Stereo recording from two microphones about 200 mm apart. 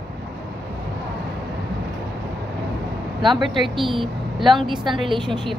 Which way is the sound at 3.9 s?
25° right (ahead or behind).